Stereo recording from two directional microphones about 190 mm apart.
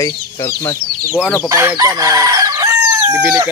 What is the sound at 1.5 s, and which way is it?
Chicken, 15° right (ahead or behind).